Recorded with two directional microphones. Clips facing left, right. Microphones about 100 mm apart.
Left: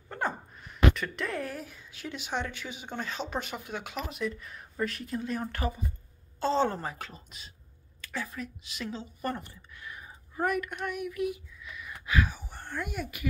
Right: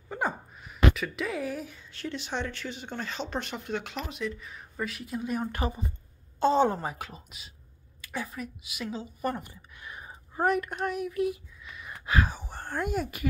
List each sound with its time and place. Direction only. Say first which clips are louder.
0.1 s speech: right 2 dB; 5° right (ahead or behind)
5.5 s a woman's voice: right 2 dB; 20° right (ahead or behind)
10.0 s speech: right 4 dB; 30° right (ahead or behind)